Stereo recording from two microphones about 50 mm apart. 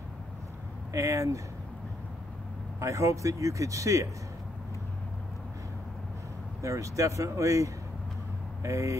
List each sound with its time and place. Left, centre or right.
0.9 s speech: right
2.8 s speech: right
6.6 s speech: right